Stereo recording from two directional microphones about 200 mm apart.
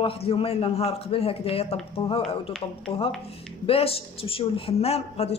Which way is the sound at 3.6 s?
30° left (ahead or behind).